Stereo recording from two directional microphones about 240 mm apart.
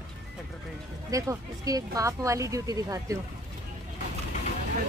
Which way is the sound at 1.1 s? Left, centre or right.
Centre.